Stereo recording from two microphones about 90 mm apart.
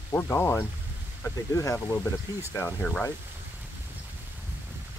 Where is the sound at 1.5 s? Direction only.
35° left (ahead or behind).